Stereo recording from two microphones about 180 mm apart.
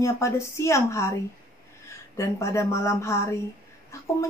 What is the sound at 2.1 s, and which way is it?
Speech, 15° left (ahead or behind).